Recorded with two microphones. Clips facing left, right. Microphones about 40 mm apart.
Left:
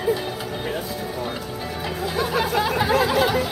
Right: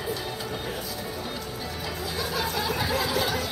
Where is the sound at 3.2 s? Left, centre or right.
Left.